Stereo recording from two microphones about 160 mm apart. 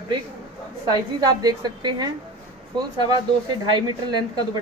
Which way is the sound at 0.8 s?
25° right (ahead or behind).